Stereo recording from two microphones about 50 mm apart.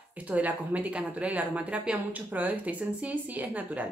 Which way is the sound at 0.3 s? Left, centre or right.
Right.